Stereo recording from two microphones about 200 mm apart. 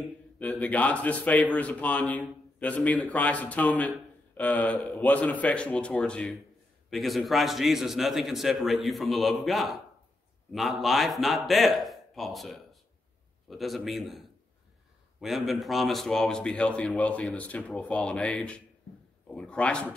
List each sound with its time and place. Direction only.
0.4 s a man's voice: 5° left (ahead or behind)